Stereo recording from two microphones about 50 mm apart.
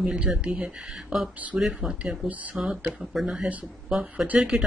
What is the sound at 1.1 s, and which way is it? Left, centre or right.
Speech, centre.